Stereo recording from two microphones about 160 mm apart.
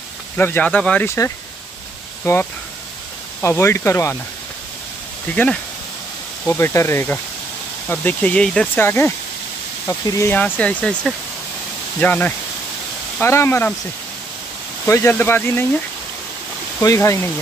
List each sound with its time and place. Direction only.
0.4 s speech: 10° left (ahead or behind)
5.3 s speech: 10° left (ahead or behind)
14.9 s speech: 15° left (ahead or behind)
16.8 s speech: 20° left (ahead or behind)